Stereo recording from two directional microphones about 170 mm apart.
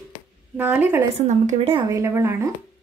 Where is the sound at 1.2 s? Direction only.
45° right (ahead or behind).